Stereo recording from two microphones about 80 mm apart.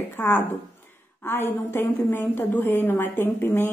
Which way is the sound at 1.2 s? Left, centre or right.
Left.